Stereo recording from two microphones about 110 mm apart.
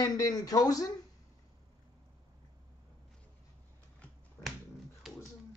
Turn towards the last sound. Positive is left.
turn(degrees=20)  # may be behind; listen again after turning